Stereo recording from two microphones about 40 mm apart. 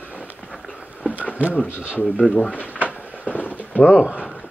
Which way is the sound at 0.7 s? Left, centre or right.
Right.